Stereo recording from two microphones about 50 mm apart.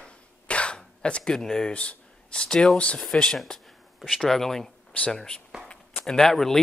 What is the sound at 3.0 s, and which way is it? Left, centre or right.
Speech, centre.